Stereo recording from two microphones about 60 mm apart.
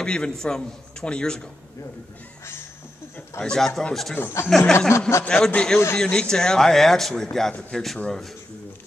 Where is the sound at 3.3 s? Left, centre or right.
Centre.